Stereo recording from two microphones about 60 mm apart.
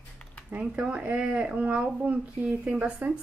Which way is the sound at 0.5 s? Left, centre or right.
Right.